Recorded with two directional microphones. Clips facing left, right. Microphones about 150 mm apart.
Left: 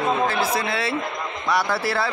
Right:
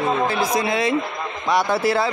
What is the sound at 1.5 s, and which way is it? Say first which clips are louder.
Speech: right 4 dB; 20° right (ahead or behind).